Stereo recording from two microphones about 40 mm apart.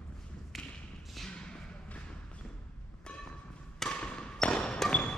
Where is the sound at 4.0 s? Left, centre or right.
Left.